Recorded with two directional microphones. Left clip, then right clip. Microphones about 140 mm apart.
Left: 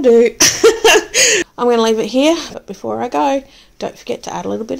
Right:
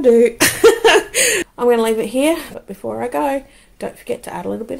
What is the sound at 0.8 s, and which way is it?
Speech, 45° left (ahead or behind).